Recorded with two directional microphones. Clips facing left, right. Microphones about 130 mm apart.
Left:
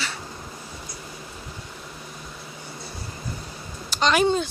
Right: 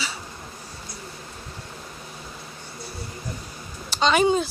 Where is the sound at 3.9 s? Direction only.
Centre (ahead or behind).